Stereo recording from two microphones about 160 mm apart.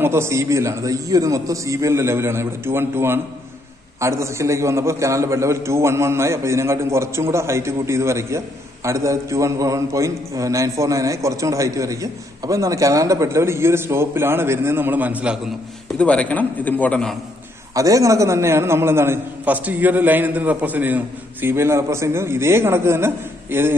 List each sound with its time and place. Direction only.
0.0 s a man's voice: 15° right (ahead or behind)
16.0 s a man's voice: 5° left (ahead or behind)
17.7 s a man's voice: 20° right (ahead or behind)